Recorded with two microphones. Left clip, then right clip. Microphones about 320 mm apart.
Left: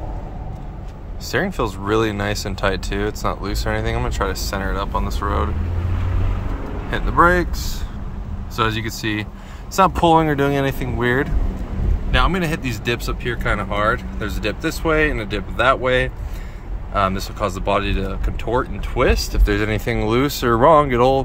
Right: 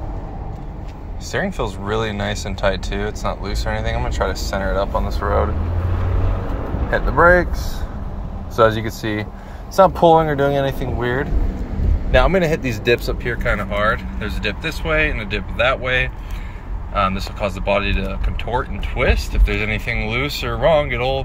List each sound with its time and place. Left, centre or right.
1.3 s speech: centre
6.9 s speech: centre
8.5 s speech: left
12.1 s speech: centre